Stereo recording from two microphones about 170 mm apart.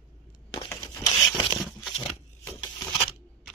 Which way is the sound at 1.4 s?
Centre (ahead or behind).